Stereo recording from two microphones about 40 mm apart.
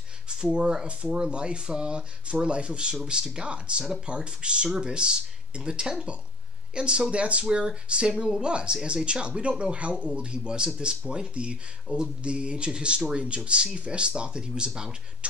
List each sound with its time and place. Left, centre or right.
0.3 s speech: right